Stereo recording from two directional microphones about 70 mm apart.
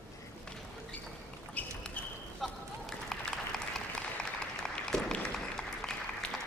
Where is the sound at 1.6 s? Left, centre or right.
Left.